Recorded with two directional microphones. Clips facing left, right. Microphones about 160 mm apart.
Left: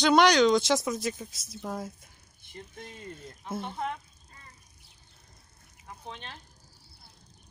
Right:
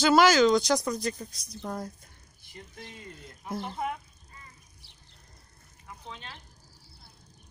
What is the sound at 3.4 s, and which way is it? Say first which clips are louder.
Speech: right 1 dB; centre (ahead or behind).